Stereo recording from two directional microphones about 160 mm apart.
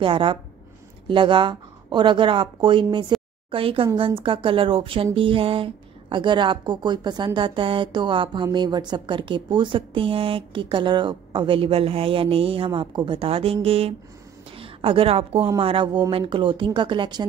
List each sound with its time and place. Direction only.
0.0 s a woman's voice: 30° right (ahead or behind)